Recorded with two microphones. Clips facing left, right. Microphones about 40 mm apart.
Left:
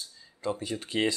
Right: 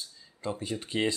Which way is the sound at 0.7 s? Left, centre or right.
Centre.